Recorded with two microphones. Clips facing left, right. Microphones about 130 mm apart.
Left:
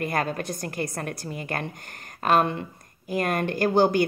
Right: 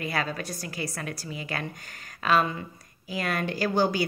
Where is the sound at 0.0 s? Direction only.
50° left (ahead or behind).